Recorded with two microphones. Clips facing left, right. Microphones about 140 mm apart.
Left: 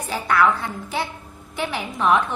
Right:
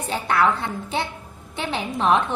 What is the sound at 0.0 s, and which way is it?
A woman's voice, 25° right (ahead or behind).